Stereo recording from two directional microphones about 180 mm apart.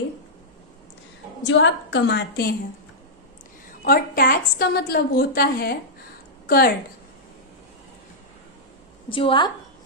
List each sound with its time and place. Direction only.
1.5 s a woman's voice: 85° left; by 2.5 s 65° left (ahead or behind)
3.8 s a woman's voice: 55° left (ahead or behind)
9.1 s a woman's voice: 30° left (ahead or behind)